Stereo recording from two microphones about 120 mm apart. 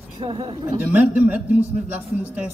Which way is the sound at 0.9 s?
10° right (ahead or behind).